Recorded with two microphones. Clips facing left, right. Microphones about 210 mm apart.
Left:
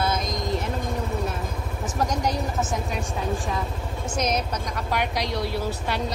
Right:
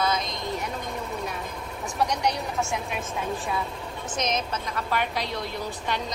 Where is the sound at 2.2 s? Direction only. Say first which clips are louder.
Left 1 dB; centre (ahead or behind).